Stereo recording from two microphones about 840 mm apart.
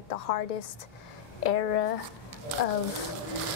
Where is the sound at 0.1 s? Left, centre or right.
Left.